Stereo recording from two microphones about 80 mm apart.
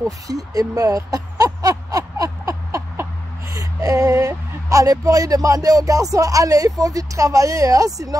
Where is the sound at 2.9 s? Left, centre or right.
Right.